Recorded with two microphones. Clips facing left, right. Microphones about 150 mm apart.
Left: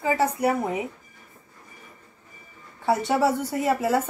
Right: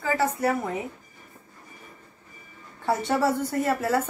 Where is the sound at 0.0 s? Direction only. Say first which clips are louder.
Left 2 dB; 20° left (ahead or behind).